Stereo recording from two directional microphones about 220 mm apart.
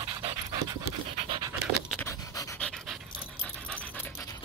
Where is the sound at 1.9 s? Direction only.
15° left (ahead or behind).